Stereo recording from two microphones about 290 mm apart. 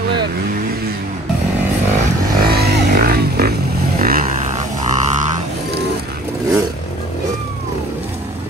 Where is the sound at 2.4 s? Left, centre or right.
Right.